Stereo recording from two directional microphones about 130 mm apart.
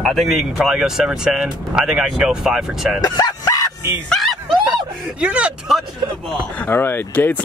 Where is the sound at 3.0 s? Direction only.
30° left (ahead or behind).